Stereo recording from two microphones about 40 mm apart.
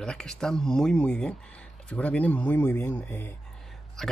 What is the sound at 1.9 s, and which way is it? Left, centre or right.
Speech, left.